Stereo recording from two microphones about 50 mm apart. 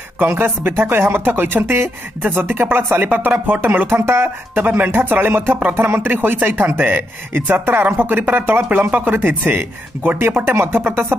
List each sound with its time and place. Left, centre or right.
0.3 s speech: right
3.6 s speech: right
6.1 s speech: right